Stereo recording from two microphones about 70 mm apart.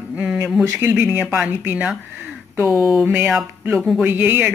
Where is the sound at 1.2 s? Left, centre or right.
Centre.